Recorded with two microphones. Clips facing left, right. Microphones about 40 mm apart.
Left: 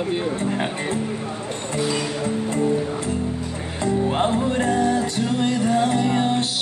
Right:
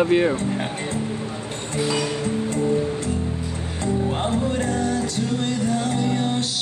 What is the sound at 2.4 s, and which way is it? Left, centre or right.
Music, left.